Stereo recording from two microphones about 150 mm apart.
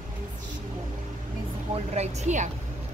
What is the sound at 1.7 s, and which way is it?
Speech, 50° right (ahead or behind).